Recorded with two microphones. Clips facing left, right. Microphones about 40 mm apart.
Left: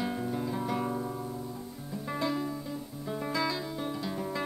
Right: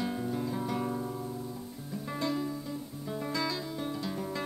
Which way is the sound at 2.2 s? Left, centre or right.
Centre.